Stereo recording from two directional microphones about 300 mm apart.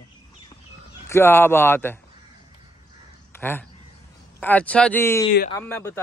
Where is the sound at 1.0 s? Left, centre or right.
Centre.